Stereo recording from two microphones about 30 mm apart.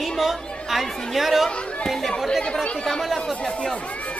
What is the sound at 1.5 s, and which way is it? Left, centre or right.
Chatter, left.